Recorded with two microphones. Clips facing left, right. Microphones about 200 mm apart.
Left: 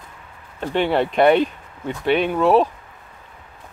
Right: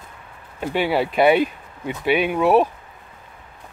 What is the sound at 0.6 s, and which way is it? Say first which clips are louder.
Speech: left 1 dB; 10° right (ahead or behind).